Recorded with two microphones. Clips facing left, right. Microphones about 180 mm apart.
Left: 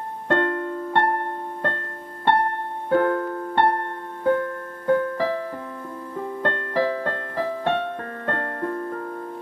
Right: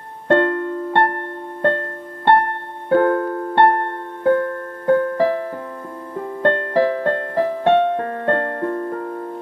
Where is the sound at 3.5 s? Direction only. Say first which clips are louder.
Right 6 dB; 60° right (ahead or behind).